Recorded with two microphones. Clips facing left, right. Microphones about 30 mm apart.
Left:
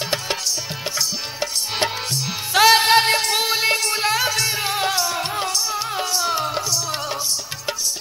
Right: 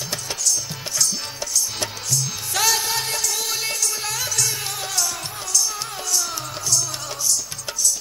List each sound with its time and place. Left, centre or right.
0.1 s music: left
2.8 s music: left